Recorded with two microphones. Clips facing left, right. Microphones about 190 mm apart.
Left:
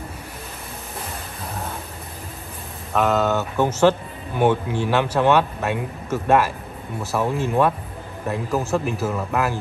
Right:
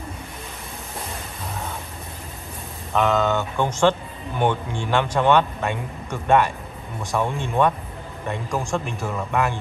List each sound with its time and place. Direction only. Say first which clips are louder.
2.9 s a man's voice: left 1 dB; centre (ahead or behind)